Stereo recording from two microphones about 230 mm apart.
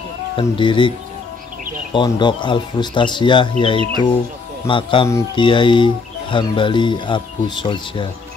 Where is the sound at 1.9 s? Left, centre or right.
Centre.